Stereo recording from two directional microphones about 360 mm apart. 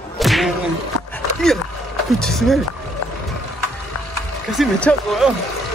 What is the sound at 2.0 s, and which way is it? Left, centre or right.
Speech, centre.